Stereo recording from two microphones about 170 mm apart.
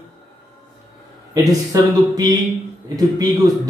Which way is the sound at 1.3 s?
20° right (ahead or behind).